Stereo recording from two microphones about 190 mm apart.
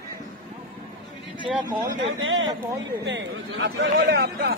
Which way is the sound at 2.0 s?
90° right.